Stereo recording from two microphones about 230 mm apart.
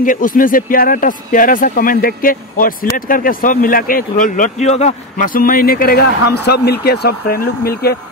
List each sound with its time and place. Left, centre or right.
0.0 s speech: left